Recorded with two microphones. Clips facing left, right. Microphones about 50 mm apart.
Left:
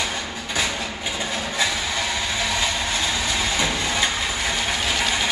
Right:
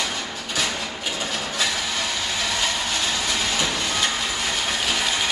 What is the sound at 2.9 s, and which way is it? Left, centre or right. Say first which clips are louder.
Train: left 1 dB; left.